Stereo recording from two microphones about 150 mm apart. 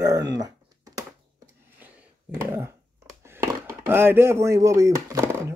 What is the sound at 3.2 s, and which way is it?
Speech, 15° right (ahead or behind).